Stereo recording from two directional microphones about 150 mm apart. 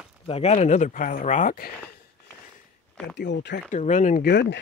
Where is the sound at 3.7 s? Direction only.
55° left (ahead or behind); by 4.5 s 75° left (ahead or behind).